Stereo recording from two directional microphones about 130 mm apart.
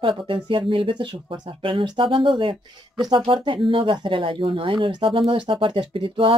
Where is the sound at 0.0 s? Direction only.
40° right (ahead or behind).